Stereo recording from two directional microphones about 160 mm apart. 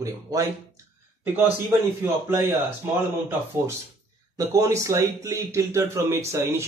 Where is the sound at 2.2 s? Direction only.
15° right (ahead or behind).